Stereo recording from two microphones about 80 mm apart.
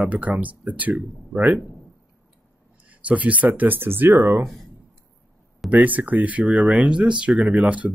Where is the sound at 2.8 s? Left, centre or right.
Centre.